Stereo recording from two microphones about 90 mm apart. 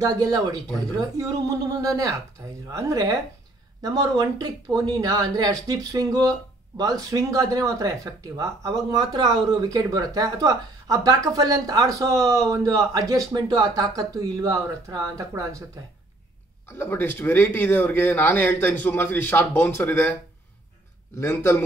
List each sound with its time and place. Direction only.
0.0 s speech: 45° right (ahead or behind)
13.3 s speech: 50° right (ahead or behind)
16.6 s speech: 25° left (ahead or behind)
21.2 s speech: 25° left (ahead or behind)